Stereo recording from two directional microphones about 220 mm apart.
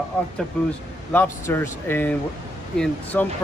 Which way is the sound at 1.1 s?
10° left (ahead or behind).